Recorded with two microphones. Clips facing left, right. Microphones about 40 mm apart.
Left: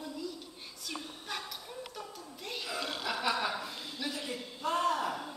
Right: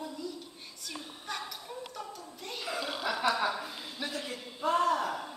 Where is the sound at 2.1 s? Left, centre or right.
Centre.